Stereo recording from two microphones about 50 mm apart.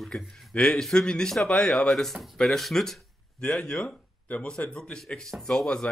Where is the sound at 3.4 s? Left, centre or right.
Centre.